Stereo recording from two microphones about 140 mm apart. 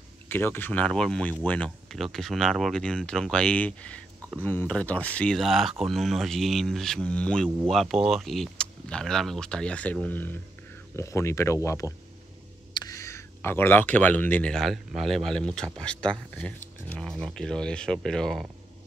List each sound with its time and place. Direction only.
0.3 s speech: 15° left (ahead or behind)